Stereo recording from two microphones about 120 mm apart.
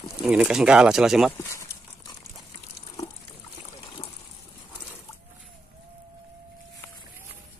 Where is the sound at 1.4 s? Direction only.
25° left (ahead or behind).